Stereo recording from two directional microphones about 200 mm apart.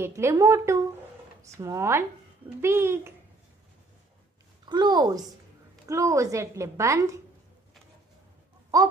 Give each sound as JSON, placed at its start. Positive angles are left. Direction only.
{"t": 0.0, "sound": "a woman's voice", "side_deg": -15}
{"t": 4.6, "sound": "a woman's voice", "side_deg": -20}
{"t": 8.7, "sound": "a woman's voice", "side_deg": -20}